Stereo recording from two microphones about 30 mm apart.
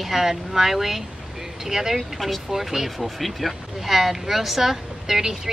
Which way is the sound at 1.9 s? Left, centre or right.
Centre.